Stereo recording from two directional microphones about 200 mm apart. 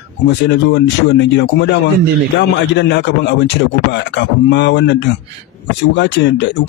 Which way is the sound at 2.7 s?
60° left (ahead or behind).